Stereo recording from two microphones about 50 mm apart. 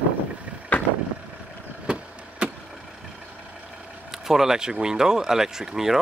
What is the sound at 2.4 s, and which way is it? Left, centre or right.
Vehicle, right.